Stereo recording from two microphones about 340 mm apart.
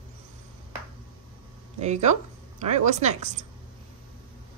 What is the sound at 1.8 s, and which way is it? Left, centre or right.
Speech, centre.